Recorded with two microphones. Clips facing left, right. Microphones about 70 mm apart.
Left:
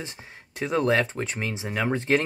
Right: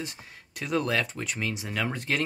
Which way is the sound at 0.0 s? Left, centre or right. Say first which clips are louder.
Even; left.